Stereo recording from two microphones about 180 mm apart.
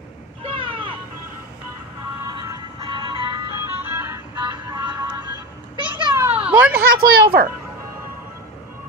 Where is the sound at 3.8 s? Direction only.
15° right (ahead or behind).